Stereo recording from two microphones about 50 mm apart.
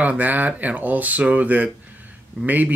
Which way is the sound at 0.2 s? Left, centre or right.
Right.